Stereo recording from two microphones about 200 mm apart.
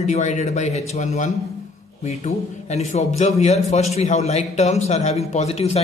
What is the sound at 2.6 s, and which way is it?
A man's voice, 35° left (ahead or behind).